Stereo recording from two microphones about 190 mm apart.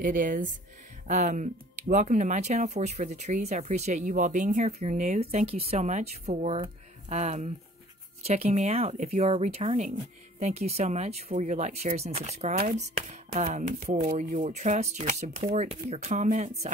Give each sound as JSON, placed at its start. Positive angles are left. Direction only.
{"t": 0.0, "sound": "speech", "side_deg": -45}